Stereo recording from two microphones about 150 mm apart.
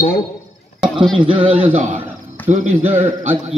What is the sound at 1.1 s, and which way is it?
Speech, 35° right (ahead or behind).